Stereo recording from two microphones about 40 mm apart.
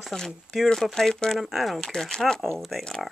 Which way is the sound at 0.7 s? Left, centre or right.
Centre.